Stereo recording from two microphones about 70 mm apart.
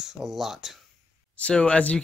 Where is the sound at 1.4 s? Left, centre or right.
Centre.